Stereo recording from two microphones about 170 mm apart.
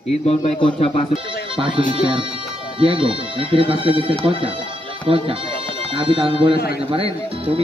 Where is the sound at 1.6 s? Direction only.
30° right (ahead or behind).